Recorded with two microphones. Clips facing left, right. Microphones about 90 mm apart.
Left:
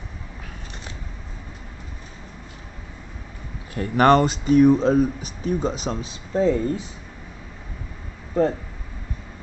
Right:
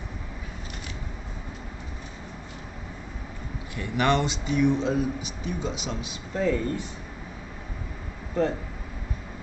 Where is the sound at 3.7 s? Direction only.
45° left (ahead or behind).